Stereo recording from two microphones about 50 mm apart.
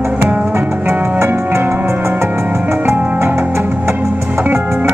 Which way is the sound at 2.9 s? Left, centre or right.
Right.